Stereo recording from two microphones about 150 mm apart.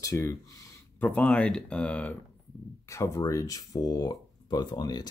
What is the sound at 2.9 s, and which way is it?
Speech, 20° left (ahead or behind).